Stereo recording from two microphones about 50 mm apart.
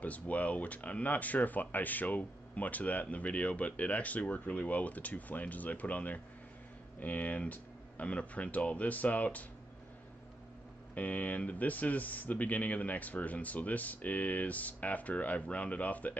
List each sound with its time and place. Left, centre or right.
0.0 s speech: left
11.0 s speech: left